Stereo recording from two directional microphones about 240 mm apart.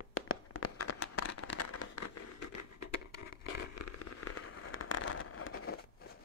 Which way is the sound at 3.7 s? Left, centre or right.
Left.